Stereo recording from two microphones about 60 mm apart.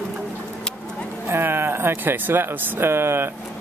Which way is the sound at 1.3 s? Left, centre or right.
Right.